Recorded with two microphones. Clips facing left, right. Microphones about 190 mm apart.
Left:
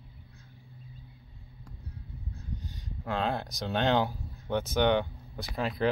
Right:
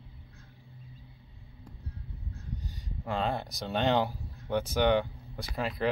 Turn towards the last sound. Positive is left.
turn(degrees=0)  # may be behind; listen again after turning